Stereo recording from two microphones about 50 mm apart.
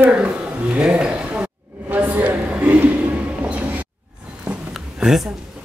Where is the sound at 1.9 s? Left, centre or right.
Right.